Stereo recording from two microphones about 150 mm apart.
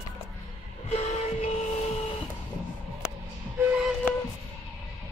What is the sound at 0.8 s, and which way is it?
Train, 45° left (ahead or behind).